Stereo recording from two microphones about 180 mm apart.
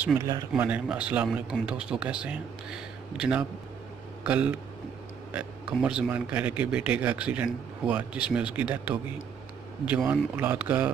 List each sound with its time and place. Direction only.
0.2 s speech: 20° right (ahead or behind)
0.5 s speech: 5° right (ahead or behind)